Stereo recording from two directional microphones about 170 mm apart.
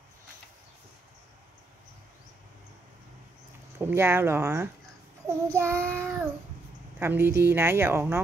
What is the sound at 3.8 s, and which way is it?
A woman's voice, 15° right (ahead or behind).